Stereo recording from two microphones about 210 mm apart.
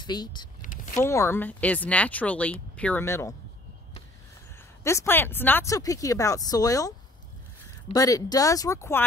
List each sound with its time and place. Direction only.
0.0 s speech: 20° left (ahead or behind)
4.8 s speech: 10° left (ahead or behind)
7.9 s speech: 15° left (ahead or behind)